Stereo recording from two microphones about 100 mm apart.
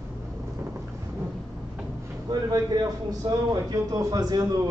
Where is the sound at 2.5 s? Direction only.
40° right (ahead or behind).